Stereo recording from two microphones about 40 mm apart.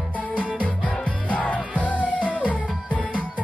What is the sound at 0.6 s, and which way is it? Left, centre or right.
Music, left.